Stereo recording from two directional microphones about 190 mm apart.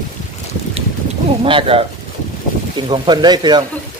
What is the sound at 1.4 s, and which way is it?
Speech, 25° right (ahead or behind).